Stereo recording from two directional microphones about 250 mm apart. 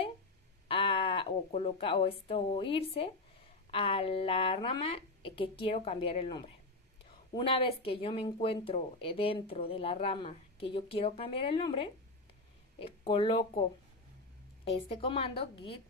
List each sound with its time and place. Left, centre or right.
0.7 s speech: left